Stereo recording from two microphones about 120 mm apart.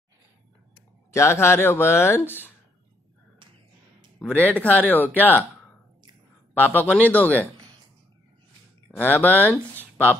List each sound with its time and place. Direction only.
1.1 s speech: 20° left (ahead or behind)
4.4 s speech: 15° left (ahead or behind)
6.6 s speech: 15° left (ahead or behind)
8.9 s speech: 15° left (ahead or behind)